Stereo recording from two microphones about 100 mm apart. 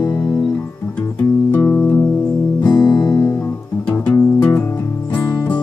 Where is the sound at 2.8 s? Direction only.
45° left (ahead or behind).